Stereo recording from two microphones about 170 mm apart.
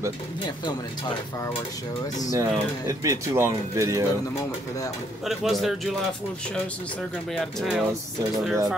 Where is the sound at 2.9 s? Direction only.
20° right (ahead or behind).